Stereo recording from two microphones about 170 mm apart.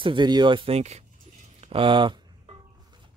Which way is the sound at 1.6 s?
30° right (ahead or behind).